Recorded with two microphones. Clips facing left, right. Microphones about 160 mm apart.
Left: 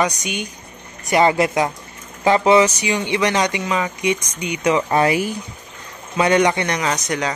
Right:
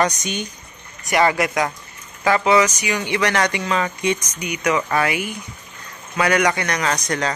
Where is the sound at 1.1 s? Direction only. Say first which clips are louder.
Left 2 dB; 25° left (ahead or behind).